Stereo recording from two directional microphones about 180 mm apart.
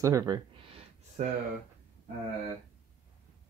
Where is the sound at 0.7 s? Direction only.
35° right (ahead or behind).